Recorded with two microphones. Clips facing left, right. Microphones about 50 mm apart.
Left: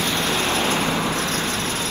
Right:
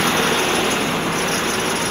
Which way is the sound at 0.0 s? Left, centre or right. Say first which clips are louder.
Right 4 dB; right.